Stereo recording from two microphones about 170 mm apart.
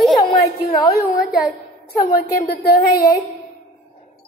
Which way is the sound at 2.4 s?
55° left (ahead or behind).